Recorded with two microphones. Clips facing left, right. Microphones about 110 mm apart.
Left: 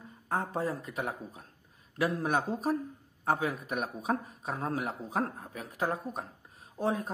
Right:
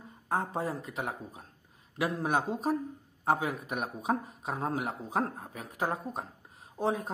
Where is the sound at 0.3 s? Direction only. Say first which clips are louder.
Even; 20° right (ahead or behind).